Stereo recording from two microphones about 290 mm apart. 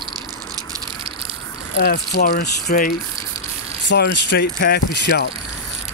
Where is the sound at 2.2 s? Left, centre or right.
Left.